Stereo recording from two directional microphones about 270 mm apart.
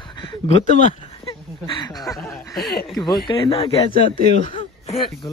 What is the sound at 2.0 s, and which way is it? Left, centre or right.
Speech, centre.